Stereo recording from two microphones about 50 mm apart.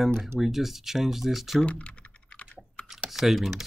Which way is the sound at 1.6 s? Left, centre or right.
Left.